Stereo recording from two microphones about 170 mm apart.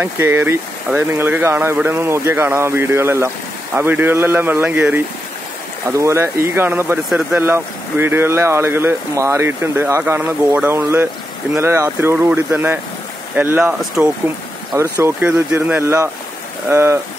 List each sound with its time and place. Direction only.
0.0 s speech: 15° right (ahead or behind)